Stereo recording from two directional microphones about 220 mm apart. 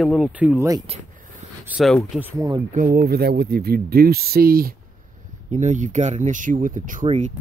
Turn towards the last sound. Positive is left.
turn(degrees=-30)  # may be behind; listen again after turning